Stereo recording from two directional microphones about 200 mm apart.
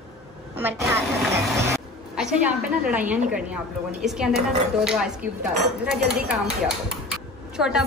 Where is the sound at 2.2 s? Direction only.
5° right (ahead or behind).